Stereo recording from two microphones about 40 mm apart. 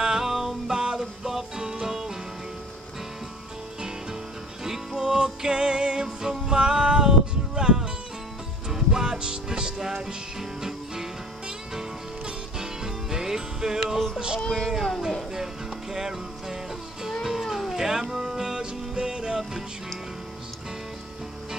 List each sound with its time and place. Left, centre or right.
0.0 s music: centre
4.6 s music: centre
12.3 s music: centre
13.9 s music: centre
14.4 s speech: centre
15.3 s music: centre